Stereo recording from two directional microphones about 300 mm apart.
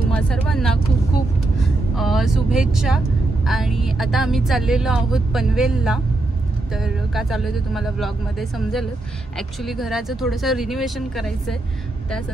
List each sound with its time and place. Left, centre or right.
0.3 s speech: centre
2.0 s speech: centre